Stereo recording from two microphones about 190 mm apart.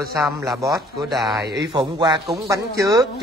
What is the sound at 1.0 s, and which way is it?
Speech, centre (ahead or behind).